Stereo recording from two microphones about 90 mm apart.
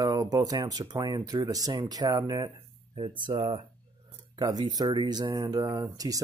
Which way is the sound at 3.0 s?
70° right (ahead or behind).